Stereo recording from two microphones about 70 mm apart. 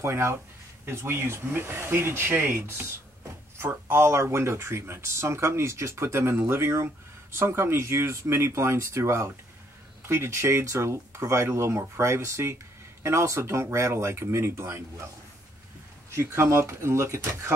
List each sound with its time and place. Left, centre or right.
0.0 s speech: right
16.2 s speech: right